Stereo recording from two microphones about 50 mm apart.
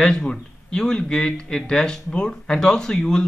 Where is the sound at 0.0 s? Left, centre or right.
Centre.